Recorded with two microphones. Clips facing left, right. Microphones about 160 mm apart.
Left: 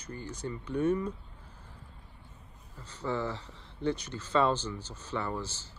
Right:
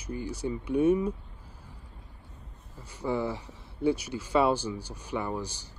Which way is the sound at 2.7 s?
10° right (ahead or behind).